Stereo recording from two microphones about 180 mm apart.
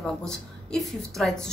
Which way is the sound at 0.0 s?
5° left (ahead or behind).